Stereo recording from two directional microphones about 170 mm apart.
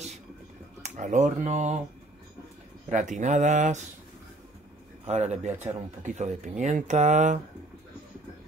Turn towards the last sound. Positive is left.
turn(degrees=-45)  # may be behind; listen again after turning